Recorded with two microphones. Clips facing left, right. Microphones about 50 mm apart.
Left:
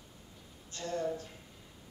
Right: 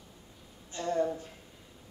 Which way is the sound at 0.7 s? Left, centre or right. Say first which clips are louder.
Right 5 dB; centre.